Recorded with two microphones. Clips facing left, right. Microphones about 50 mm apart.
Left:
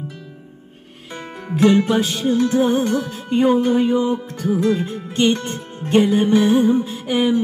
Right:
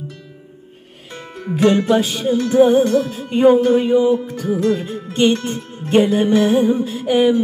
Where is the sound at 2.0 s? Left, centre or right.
Centre.